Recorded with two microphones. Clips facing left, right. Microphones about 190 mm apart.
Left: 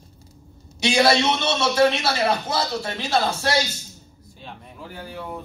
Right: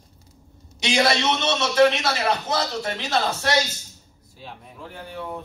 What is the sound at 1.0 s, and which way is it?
A man's voice, 30° left (ahead or behind).